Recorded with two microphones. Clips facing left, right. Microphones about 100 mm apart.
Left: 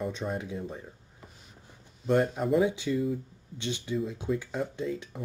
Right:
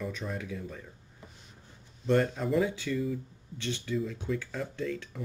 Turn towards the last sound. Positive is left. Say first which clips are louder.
# left 1 dB
turn(degrees=20)  # may be behind; listen again after turning